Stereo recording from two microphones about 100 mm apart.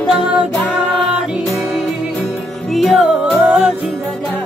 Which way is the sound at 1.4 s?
Centre (ahead or behind).